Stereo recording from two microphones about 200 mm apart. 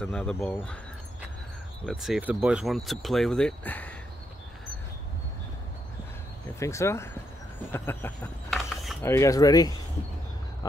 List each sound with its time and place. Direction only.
0.0 s speech: 5° left (ahead or behind)
1.9 s speech: centre (ahead or behind)
6.6 s speech: 15° left (ahead or behind)
7.7 s a sound: 10° left (ahead or behind)
9.0 s speech: 15° left (ahead or behind)